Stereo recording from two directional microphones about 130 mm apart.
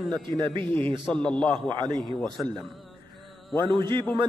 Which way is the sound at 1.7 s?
35° right (ahead or behind).